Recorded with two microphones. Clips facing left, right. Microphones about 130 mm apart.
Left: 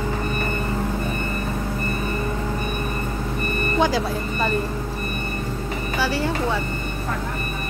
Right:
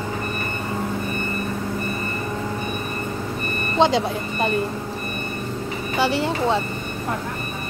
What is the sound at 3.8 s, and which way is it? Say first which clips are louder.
Speech: right 4 dB; 25° right (ahead or behind).